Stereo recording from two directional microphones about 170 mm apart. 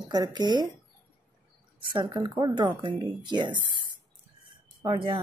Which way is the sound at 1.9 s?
25° right (ahead or behind).